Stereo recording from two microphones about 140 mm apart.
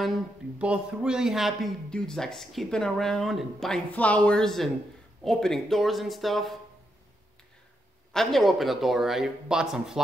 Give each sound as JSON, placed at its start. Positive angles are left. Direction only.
{"t": 0.6, "sound": "speech", "side_deg": -5}
{"t": 8.1, "sound": "speech", "side_deg": 0}